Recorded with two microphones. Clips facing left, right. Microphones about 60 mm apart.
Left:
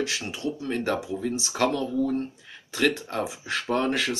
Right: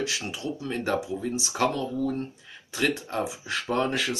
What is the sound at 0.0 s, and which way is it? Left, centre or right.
Speech, left.